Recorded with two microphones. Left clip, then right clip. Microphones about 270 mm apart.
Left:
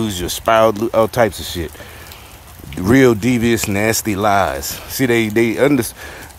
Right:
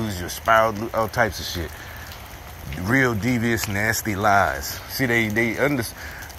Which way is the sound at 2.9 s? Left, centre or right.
Left.